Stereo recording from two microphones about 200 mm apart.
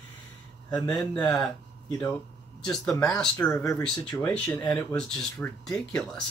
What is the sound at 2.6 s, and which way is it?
Speech, 5° left (ahead or behind).